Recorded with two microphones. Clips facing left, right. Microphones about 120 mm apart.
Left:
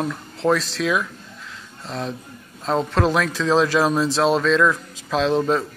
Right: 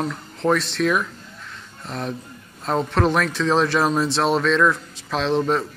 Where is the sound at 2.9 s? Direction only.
10° left (ahead or behind).